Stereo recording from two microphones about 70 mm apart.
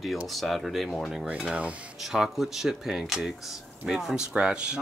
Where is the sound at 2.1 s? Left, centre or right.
Centre.